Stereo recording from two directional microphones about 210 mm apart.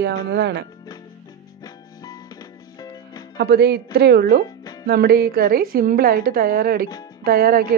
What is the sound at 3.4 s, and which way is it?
A woman's voice, 50° right (ahead or behind).